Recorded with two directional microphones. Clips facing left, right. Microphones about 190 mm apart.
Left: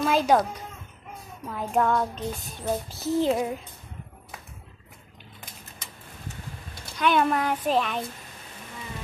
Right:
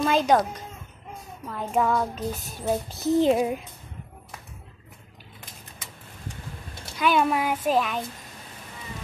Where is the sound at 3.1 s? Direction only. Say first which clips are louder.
Right 3 dB; 20° right (ahead or behind).